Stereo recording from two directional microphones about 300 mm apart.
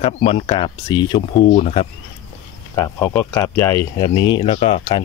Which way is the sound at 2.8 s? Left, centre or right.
Centre.